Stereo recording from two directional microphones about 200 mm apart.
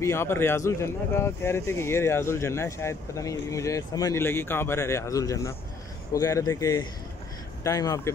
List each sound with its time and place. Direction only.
0.0 s speech: 15° left (ahead or behind)